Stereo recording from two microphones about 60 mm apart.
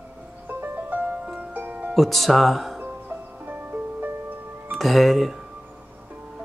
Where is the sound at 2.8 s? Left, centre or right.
Right.